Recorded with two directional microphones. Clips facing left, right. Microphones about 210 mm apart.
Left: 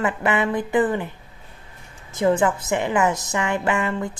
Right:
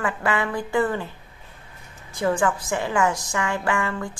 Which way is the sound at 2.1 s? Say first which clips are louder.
Left 3 dB; 20° left (ahead or behind).